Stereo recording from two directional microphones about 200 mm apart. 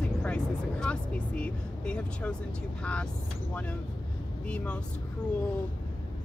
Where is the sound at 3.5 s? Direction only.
5° left (ahead or behind).